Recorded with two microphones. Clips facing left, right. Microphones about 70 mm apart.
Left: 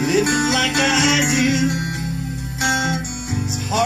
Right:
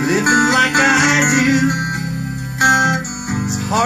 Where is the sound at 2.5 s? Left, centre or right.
Right.